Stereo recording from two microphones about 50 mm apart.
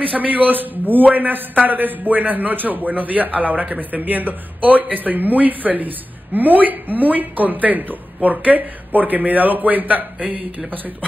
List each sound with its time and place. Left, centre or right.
0.1 s a man's voice: right